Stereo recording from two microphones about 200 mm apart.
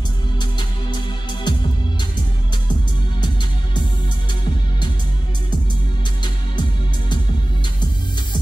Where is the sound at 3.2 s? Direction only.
20° left (ahead or behind).